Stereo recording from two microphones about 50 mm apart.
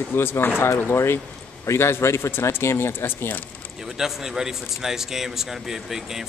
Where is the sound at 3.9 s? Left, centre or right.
Centre.